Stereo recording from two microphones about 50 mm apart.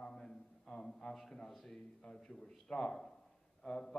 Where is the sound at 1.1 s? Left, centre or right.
Centre.